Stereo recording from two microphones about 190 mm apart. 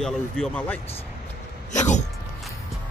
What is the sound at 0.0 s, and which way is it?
Speech, 5° left (ahead or behind).